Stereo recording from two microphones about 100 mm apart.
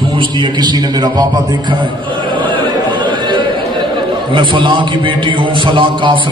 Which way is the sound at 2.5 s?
50° right (ahead or behind).